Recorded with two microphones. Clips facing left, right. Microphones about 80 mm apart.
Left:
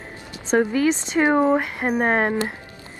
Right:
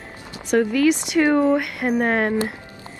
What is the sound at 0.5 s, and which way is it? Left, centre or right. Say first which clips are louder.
Speech: right 1 dB; left.